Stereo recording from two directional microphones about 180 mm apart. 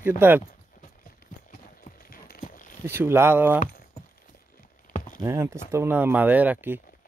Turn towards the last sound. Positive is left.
turn(degrees=-10)  # may be behind; listen again after turning